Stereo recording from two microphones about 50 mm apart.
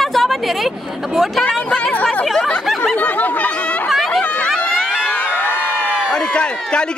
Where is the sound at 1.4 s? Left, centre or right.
Left.